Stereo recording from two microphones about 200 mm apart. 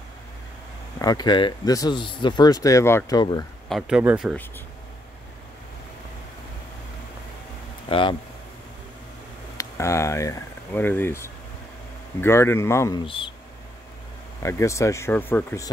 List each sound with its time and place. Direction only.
0.9 s speech: 20° left (ahead or behind)
3.6 s speech: centre (ahead or behind)
7.9 s speech: 25° left (ahead or behind)
9.6 s speech: 15° left (ahead or behind)
14.4 s speech: 15° left (ahead or behind)